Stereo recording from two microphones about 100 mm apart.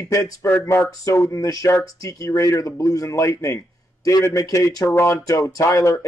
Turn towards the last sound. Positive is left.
turn(degrees=30)  # may be behind; listen again after turning